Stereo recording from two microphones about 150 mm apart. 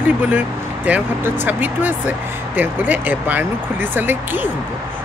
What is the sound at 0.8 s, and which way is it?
Speech, 10° right (ahead or behind).